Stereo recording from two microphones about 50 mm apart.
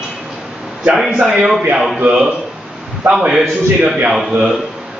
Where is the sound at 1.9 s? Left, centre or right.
Centre.